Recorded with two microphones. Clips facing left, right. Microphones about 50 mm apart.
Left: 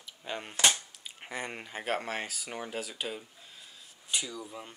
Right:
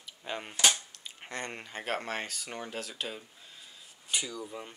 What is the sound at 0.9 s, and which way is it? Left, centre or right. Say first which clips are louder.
Speech: left 1 dB; centre.